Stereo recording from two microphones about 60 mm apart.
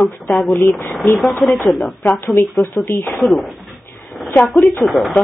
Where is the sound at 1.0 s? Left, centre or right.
Left.